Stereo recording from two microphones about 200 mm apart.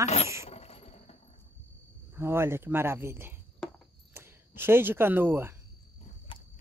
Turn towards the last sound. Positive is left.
turn(degrees=25)  # may be behind; listen again after turning